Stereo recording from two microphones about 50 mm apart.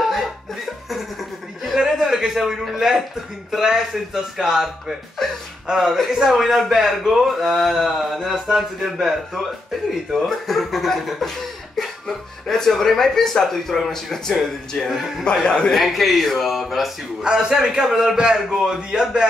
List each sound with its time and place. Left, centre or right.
1.8 s a man's voice: centre
12.4 s speech: centre
14.9 s a man's voice: centre
15.4 s speech: centre
15.7 s a man's voice: centre
17.2 s a man's voice: centre